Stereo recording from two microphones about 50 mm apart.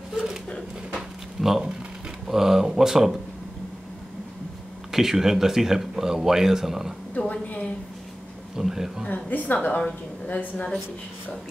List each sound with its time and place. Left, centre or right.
0.9 s a sound: centre
2.2 s speech: centre
4.9 s speech: centre
7.2 s a sound: left
8.5 s speech: centre
9.1 s a woman's voice: left